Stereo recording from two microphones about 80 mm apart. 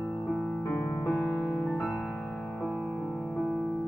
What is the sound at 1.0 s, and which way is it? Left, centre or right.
Music, left.